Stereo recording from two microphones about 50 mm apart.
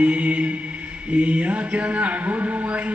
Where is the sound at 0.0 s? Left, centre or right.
Right.